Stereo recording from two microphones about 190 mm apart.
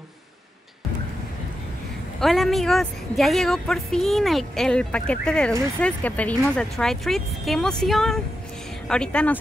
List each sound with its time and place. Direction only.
2.1 s a woman's voice: centre (ahead or behind)